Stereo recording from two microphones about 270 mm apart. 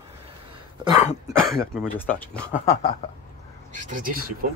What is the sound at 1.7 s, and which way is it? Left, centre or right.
Speech, centre.